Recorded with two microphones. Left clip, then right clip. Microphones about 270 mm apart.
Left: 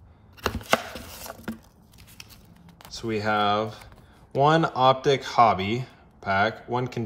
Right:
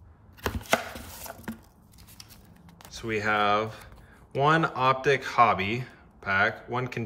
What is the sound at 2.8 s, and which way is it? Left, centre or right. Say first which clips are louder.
Speech: left 1 dB; centre.